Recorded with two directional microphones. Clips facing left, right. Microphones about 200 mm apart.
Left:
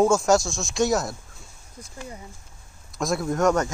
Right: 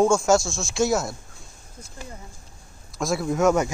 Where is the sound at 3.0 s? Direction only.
Centre (ahead or behind).